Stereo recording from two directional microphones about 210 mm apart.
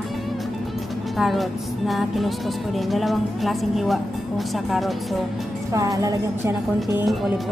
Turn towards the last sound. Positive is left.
turn(degrees=-15)  # may be behind; listen again after turning